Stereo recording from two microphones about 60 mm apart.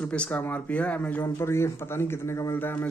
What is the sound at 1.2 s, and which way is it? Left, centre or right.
A man's voice, left.